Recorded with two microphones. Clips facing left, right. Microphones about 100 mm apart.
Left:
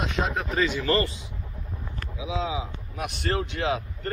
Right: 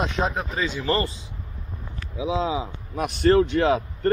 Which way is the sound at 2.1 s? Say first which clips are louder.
Right 5 dB; 35° right (ahead or behind).